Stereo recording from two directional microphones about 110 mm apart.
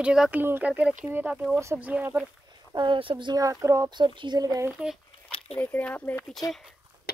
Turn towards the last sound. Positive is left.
turn(degrees=35)  # may be behind; listen again after turning